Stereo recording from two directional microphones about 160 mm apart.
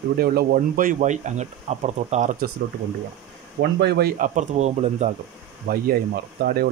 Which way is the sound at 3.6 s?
85° right.